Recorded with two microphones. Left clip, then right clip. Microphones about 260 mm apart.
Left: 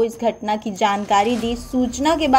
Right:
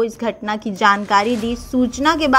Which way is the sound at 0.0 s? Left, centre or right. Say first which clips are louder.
Left 1 dB; right.